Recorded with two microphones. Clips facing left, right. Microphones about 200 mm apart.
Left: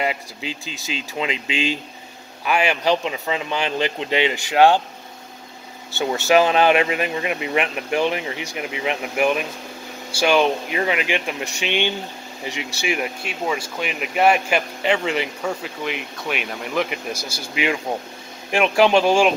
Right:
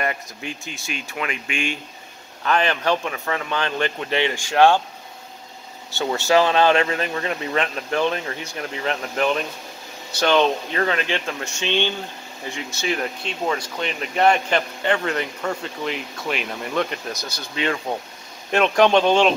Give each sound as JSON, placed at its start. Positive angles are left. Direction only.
{"t": 0.4, "sound": "speech", "side_deg": 90}
{"t": 1.1, "sound": "speech", "side_deg": 20}
{"t": 2.4, "sound": "speech", "side_deg": 10}
{"t": 5.9, "sound": "speech", "side_deg": 15}